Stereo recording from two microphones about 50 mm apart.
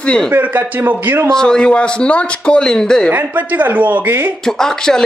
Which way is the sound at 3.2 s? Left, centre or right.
Right.